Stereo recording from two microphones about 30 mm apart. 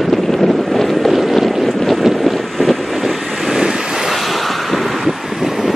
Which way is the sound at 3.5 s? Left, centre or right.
Centre.